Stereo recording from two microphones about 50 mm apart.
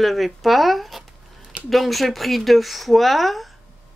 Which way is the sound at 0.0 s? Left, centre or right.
Centre.